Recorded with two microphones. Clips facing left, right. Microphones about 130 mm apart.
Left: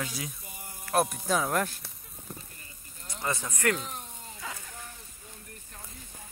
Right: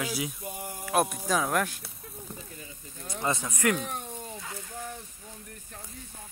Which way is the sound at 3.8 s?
60° right (ahead or behind).